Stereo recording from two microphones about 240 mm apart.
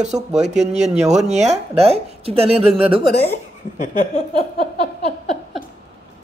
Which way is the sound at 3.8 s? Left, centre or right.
Left.